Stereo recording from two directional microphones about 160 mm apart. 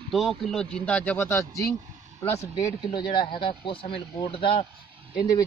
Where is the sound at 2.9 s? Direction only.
30° left (ahead or behind).